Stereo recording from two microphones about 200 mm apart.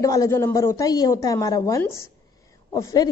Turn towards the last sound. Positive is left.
turn(degrees=20)  # may be behind; listen again after turning